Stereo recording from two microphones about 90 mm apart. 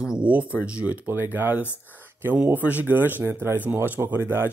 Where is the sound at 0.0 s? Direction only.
10° right (ahead or behind).